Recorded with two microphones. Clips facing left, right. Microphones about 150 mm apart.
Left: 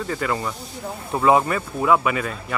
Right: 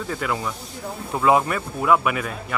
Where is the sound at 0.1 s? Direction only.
Centre (ahead or behind).